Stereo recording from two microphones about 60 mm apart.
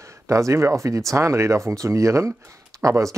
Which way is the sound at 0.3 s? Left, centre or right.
Right.